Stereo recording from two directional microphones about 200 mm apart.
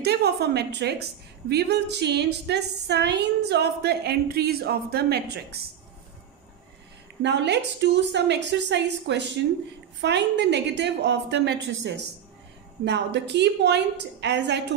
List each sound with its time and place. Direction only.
0.0 s a woman's voice: 55° right (ahead or behind)
7.2 s a woman's voice: 60° right (ahead or behind)